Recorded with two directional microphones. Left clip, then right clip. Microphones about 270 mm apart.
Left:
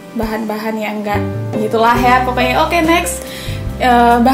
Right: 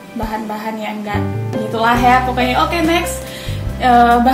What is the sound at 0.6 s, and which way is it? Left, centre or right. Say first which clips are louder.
A woman's voice: left 3 dB; left.